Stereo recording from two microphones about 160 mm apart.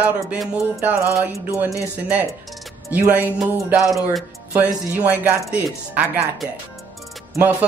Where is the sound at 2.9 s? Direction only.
10° right (ahead or behind).